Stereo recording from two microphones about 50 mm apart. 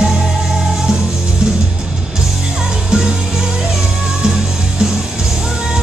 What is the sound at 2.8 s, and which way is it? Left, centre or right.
Music, centre.